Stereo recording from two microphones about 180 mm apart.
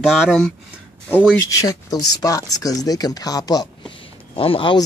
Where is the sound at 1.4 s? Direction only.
20° left (ahead or behind).